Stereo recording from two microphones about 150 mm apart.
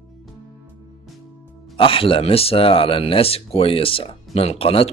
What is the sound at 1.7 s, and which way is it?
Speech, 35° left (ahead or behind).